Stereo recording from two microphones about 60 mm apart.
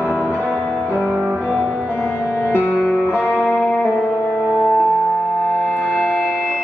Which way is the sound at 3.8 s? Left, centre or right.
Left.